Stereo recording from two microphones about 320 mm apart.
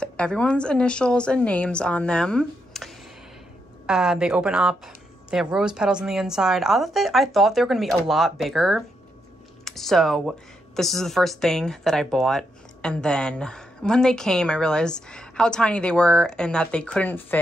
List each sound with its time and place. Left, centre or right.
0.0 s speech: centre